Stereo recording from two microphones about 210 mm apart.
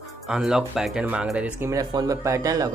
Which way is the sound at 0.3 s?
5° right (ahead or behind).